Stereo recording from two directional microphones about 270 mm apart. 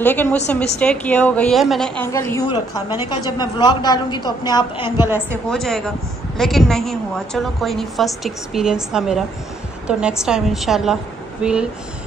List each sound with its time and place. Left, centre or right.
0.0 s a woman's voice: centre
4.9 s a woman's voice: centre